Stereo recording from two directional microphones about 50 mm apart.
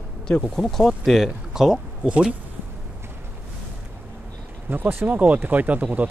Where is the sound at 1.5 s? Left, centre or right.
Centre.